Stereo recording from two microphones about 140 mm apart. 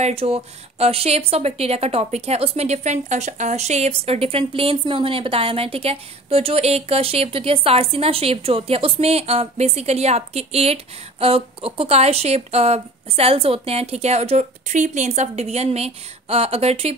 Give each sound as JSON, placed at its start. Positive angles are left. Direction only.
{"t": 0.0, "sound": "speech", "side_deg": -45}